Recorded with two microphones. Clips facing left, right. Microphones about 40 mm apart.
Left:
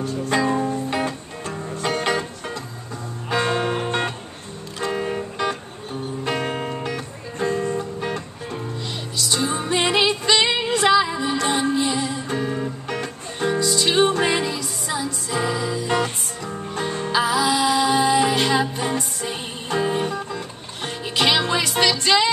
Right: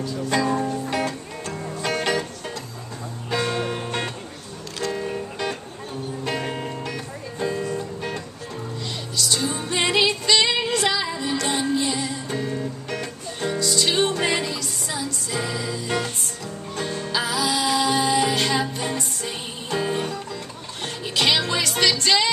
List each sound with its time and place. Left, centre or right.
0.3 s music: left
3.3 s music: left
6.4 s music: left
9.3 s music: centre
17.1 s music: centre